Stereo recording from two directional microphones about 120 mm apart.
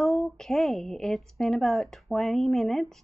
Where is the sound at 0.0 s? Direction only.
Centre (ahead or behind).